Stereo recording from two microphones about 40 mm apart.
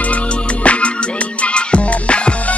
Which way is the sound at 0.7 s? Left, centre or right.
Left.